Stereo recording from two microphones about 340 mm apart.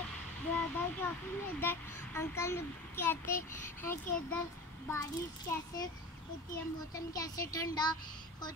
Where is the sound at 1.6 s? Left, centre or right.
Centre.